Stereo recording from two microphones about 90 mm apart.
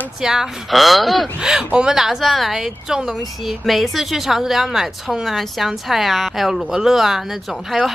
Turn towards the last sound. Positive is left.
turn(degrees=0)  # may be behind; listen again after turning